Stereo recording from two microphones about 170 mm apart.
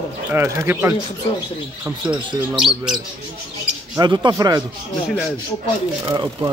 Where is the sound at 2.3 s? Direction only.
20° right (ahead or behind).